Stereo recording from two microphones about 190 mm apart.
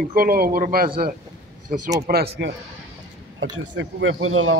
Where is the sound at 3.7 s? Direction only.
70° right (ahead or behind); by 4.5 s 90° right.